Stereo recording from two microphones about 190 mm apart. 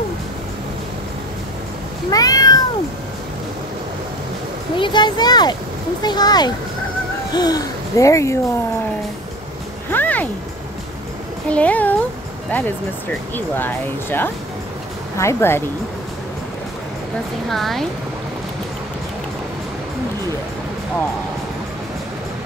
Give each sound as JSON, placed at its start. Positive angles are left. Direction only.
{"t": 2.0, "sound": "cat", "side_deg": 20}
{"t": 4.7, "sound": "speech", "side_deg": 25}
{"t": 9.8, "sound": "music", "side_deg": 10}
{"t": 11.5, "sound": "speech", "side_deg": 10}
{"t": 17.5, "sound": "speech", "side_deg": 0}